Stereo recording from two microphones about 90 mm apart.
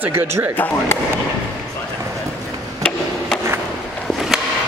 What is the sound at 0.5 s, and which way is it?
Speech, 20° left (ahead or behind).